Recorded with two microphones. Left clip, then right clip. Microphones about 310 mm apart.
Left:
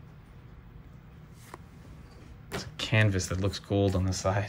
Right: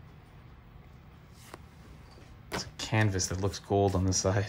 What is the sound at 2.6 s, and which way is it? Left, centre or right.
Speech, centre.